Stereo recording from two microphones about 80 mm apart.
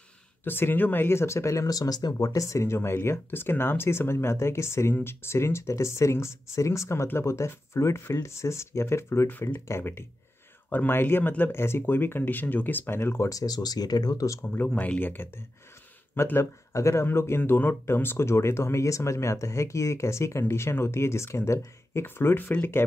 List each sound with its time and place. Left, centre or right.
0.4 s speech: left
9.3 s speech: left
13.3 s speech: left
14.4 s speech: left
16.7 s speech: left